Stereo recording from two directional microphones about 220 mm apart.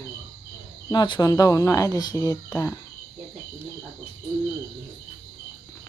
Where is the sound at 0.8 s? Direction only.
20° left (ahead or behind).